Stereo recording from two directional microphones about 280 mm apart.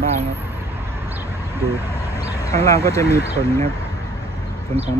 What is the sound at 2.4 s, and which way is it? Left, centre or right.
Speech, centre.